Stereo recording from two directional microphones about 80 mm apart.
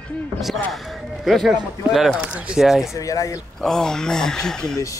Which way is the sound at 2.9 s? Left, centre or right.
Left.